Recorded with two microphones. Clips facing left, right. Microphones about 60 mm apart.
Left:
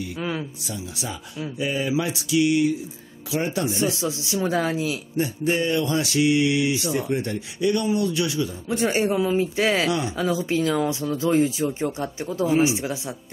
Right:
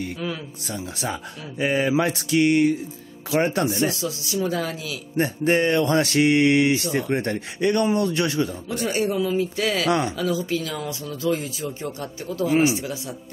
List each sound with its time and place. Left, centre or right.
0.2 s speech: left
0.7 s mantra: right
3.4 s speech: right
4.0 s speech: left
5.1 s mantra: right
8.6 s speech: left
9.8 s mantra: right
10.1 s speech: left
12.4 s speech: right
12.7 s speech: left